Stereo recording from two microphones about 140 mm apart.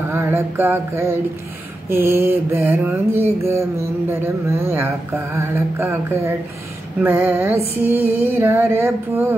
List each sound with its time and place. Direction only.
0.1 s mantra: 20° right (ahead or behind)